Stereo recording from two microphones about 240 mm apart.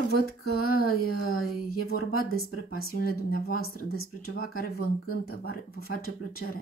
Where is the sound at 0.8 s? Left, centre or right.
Left.